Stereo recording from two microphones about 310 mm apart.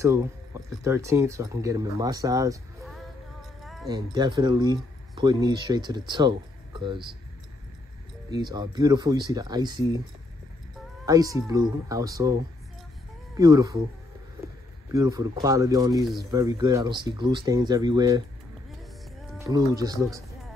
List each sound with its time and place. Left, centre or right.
0.8 s speech: centre
3.8 s speech: centre
8.3 s speech: centre
11.1 s speech: centre
13.4 s speech: centre
14.9 s speech: centre
19.3 s speech: centre